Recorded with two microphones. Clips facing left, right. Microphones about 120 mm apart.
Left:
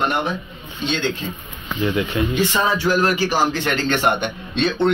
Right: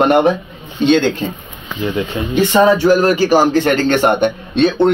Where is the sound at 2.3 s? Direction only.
50° right (ahead or behind).